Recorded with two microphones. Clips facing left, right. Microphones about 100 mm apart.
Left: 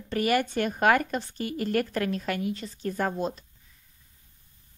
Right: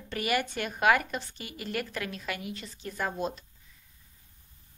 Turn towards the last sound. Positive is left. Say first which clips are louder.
# left 5 dB
turn(degrees=40)  # may be behind; listen again after turning